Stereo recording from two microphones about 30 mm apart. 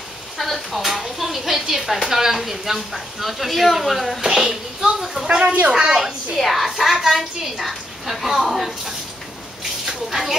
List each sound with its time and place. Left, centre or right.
0.4 s speech: centre
4.2 s speech: centre
5.2 s speech: right
5.7 s speech: right
6.3 s speech: centre